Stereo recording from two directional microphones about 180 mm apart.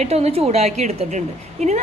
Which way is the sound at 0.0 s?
35° right (ahead or behind).